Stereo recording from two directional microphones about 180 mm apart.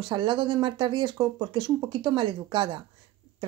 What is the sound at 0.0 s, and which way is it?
Speech, 25° right (ahead or behind).